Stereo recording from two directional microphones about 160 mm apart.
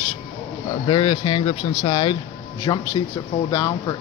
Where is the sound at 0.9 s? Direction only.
30° left (ahead or behind).